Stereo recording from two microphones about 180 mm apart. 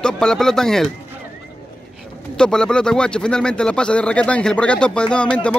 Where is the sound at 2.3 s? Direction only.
5° left (ahead or behind).